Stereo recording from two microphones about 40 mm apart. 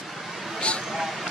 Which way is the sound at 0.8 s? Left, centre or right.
Centre.